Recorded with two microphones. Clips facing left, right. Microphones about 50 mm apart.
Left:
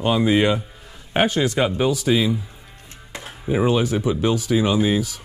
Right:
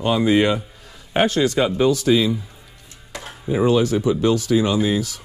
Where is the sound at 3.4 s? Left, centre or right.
Centre.